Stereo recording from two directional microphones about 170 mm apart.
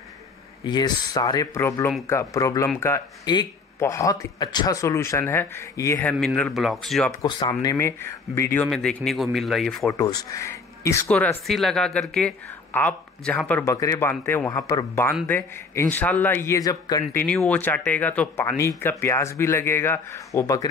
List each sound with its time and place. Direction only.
0.7 s speech: 25° left (ahead or behind)
6.1 s speech: centre (ahead or behind)
7.1 s speech: 25° left (ahead or behind)
7.6 s speech: 15° left (ahead or behind)
8.6 s speech: centre (ahead or behind)
9.8 s speech: 20° left (ahead or behind)